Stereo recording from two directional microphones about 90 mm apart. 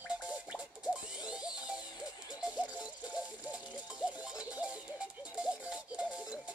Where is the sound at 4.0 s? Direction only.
15° right (ahead or behind).